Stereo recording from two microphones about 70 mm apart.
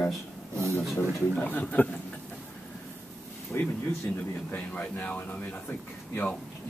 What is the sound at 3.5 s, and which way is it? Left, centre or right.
A man's voice, left.